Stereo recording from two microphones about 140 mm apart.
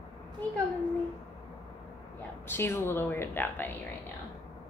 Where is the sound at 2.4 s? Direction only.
15° left (ahead or behind).